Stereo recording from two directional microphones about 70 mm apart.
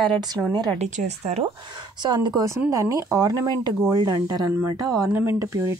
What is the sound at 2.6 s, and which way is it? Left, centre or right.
Speech, right.